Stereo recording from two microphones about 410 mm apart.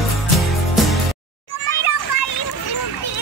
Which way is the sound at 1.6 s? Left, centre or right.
Left.